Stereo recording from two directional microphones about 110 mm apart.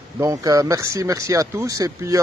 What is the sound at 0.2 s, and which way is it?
Speech, 30° right (ahead or behind).